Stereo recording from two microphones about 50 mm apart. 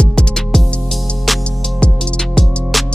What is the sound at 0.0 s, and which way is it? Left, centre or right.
Music, centre.